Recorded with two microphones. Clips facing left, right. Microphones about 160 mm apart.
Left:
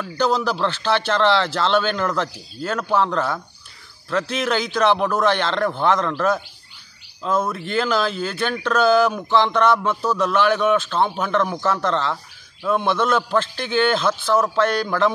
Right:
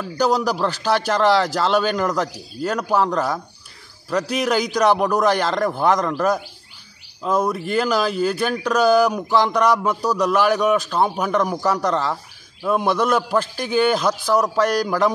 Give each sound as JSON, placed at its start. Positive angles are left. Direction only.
{"t": 0.0, "sound": "speech", "side_deg": -10}